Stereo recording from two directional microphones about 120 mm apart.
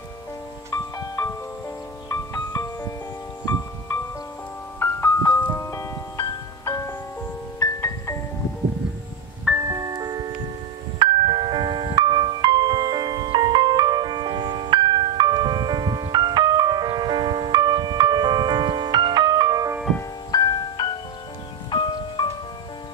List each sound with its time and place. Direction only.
0.9 s music: 30° left (ahead or behind)
4.7 s music: 20° left (ahead or behind)
9.6 s music: 30° right (ahead or behind)
20.2 s music: 35° left (ahead or behind)